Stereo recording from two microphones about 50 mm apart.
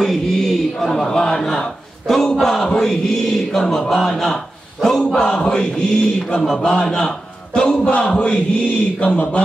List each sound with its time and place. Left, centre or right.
0.0 s a man's voice: centre; by 9.4 s left